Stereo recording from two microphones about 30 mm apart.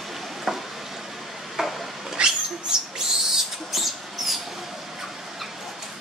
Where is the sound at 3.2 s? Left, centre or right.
Centre.